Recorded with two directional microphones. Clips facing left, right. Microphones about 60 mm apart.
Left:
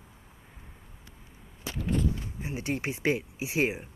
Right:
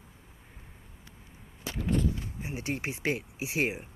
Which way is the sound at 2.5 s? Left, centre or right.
Centre.